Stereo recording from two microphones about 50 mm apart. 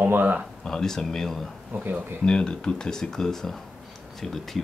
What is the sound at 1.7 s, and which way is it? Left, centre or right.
Speech, right.